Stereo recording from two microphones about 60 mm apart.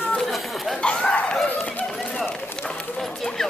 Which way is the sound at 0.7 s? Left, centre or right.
Centre.